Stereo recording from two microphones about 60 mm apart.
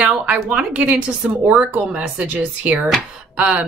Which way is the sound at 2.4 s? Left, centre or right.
Centre.